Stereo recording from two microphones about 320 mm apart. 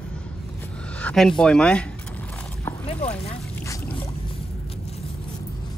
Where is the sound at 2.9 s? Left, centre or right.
Centre.